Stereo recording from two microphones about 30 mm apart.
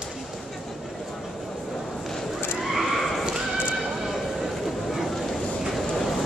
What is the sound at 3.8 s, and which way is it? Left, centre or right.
Train, centre.